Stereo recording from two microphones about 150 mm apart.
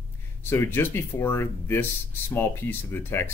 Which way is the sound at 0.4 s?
15° left (ahead or behind).